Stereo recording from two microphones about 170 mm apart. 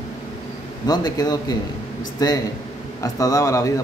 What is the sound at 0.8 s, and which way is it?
Speech, 20° left (ahead or behind).